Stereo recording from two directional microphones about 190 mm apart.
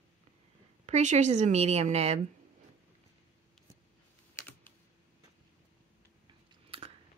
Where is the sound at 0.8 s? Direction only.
40° right (ahead or behind).